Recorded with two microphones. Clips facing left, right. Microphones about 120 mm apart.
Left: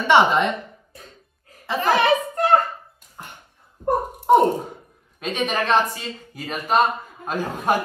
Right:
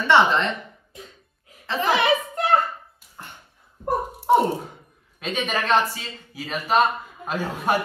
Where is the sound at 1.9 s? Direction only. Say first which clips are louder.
Left 2 dB; 45° left (ahead or behind).